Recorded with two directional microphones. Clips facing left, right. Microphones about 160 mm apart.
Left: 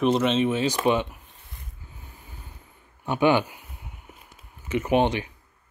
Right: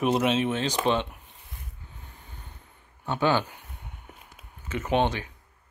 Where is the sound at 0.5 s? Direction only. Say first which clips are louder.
Left 3 dB; 10° left (ahead or behind).